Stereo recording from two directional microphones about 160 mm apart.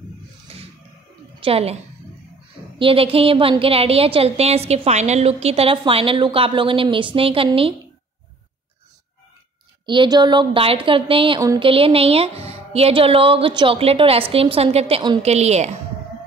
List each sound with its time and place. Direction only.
1.4 s a woman's voice: 40° right (ahead or behind)
2.8 s a woman's voice: 35° right (ahead or behind)
9.8 s a woman's voice: 30° right (ahead or behind); by 15.8 s 45° right (ahead or behind)